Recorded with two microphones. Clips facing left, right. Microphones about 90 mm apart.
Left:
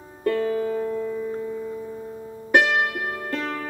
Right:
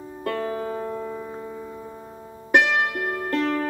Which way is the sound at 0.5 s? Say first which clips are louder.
Left 4 dB; 35° right (ahead or behind).